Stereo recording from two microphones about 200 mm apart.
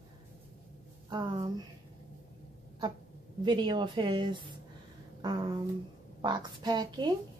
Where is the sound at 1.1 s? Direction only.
20° right (ahead or behind).